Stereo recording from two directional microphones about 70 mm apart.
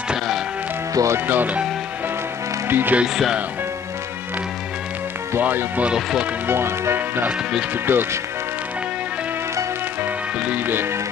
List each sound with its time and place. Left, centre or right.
0.9 s speech: right
1.2 s speech: right
2.7 s speech: right
5.4 s speech: right
5.9 s speech: centre
6.4 s speech: right
10.0 s music: right